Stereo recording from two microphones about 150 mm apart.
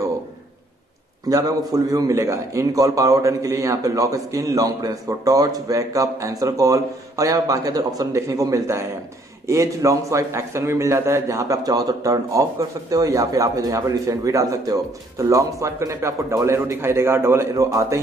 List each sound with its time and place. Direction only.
1.7 s a man's voice: 25° right (ahead or behind)